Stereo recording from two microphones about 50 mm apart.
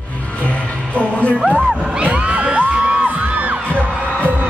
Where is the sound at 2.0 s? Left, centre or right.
Right.